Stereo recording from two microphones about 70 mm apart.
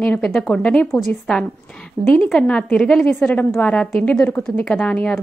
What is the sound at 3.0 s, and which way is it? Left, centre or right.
A woman's voice, left.